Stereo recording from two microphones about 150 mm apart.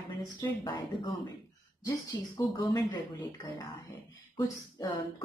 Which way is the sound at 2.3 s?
30° left (ahead or behind).